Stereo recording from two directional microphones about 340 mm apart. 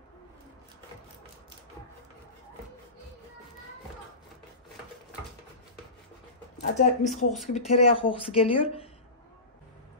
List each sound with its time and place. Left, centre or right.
6.6 s a woman's voice: left